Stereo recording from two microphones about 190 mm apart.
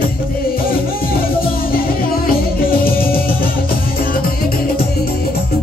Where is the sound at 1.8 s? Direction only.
50° left (ahead or behind).